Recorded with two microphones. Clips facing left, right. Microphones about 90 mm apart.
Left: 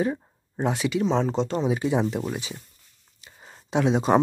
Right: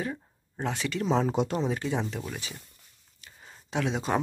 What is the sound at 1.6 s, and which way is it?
Speech, 15° left (ahead or behind).